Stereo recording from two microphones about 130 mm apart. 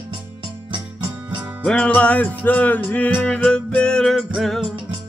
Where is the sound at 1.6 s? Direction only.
10° left (ahead or behind).